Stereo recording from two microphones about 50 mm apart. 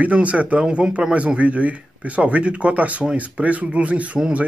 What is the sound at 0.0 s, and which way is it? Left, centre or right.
Speech, right.